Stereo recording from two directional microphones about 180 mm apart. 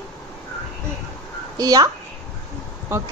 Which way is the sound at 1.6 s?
20° right (ahead or behind).